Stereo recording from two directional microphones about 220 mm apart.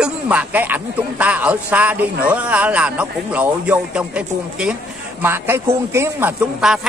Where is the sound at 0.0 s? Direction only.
5° right (ahead or behind).